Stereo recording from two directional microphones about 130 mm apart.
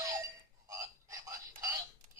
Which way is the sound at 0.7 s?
25° right (ahead or behind).